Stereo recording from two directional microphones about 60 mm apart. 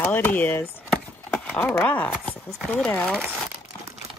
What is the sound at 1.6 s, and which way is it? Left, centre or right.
Speech, left.